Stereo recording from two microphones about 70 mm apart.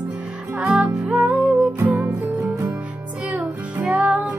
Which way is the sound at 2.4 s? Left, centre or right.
Right.